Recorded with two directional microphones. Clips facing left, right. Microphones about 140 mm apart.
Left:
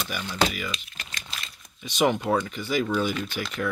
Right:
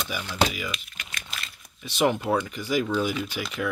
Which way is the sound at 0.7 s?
35° left (ahead or behind).